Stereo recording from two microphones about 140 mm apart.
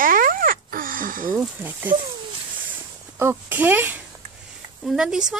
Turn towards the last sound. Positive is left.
turn(degrees=-5)  # may be behind; listen again after turning